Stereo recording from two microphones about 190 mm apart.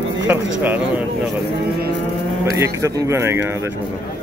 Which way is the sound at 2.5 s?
15° right (ahead or behind).